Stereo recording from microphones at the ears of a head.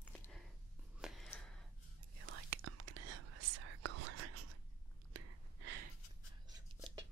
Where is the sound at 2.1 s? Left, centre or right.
Right.